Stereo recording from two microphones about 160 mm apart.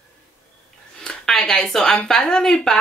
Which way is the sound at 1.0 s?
5° left (ahead or behind).